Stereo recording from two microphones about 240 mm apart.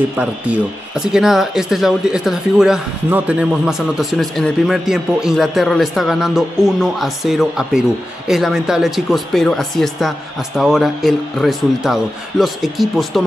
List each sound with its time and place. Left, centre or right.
0.2 s speech: centre